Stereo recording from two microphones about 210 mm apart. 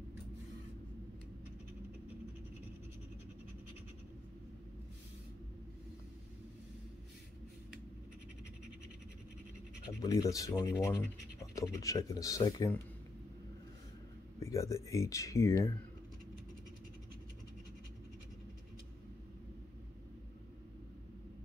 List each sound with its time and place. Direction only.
10.0 s speech: 15° left (ahead or behind)
14.4 s speech: 15° left (ahead or behind)